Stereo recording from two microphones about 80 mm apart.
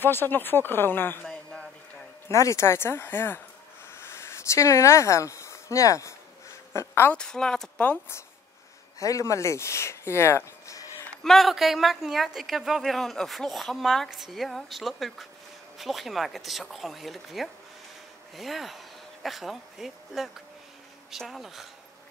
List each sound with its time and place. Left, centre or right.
0.0 s speech: left
1.2 s a sound: centre
2.2 s speech: left
3.9 s a sound: left
6.7 s speech: left
7.2 s a woman's voice: centre
9.0 s speech: left
11.2 s speech: centre